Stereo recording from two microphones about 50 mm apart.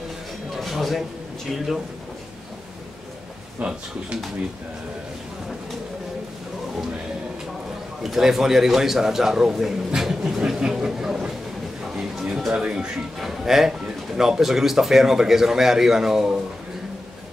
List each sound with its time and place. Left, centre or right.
0.6 s a sound: centre
3.5 s speech: right
8.0 s speech: centre
10.6 s a sound: centre
12.5 s speech: centre
13.2 s speech: centre